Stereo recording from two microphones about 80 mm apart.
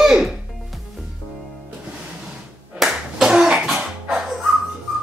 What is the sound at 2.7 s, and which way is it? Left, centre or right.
Slap, centre.